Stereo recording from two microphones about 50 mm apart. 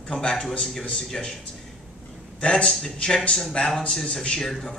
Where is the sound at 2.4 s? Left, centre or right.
Centre.